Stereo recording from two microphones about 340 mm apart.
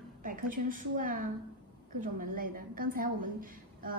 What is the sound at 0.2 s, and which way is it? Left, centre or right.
A woman's voice, right.